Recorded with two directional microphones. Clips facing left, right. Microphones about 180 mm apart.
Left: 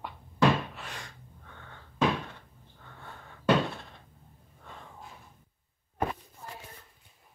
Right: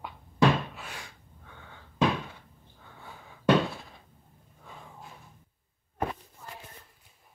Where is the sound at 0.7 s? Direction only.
5° right (ahead or behind).